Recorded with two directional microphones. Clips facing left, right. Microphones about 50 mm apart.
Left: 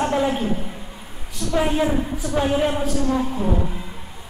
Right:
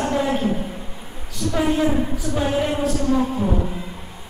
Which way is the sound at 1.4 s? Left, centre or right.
Right.